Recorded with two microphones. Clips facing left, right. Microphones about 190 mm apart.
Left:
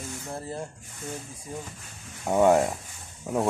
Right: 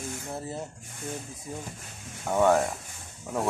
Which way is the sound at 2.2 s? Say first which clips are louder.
Left 3 dB; 15° left (ahead or behind).